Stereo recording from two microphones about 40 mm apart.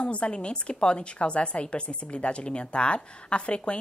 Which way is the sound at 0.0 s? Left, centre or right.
Left.